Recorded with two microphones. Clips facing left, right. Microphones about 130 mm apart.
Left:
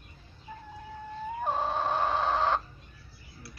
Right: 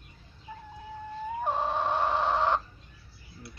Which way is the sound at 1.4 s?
20° right (ahead or behind).